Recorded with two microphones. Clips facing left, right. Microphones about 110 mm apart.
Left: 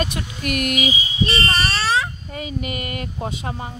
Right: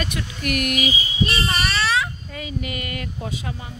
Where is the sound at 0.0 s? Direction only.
30° left (ahead or behind).